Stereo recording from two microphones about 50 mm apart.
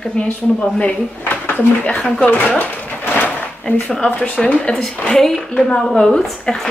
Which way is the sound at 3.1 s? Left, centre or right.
Left.